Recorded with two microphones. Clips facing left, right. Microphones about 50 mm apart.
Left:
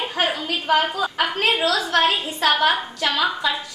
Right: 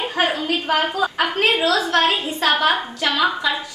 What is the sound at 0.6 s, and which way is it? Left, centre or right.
A woman's voice, centre.